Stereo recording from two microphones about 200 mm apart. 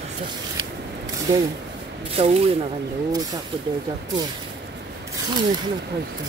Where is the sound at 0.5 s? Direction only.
20° right (ahead or behind).